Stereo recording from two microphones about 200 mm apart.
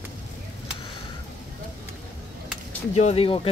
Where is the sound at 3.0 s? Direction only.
30° left (ahead or behind).